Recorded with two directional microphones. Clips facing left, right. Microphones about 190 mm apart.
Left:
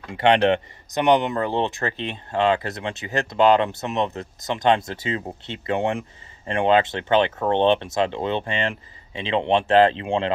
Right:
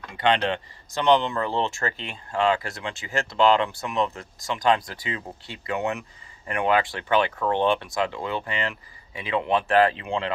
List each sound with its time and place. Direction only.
0.1 s speech: 25° left (ahead or behind)